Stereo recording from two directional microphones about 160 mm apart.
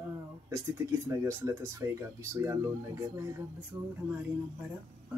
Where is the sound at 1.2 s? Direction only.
20° right (ahead or behind).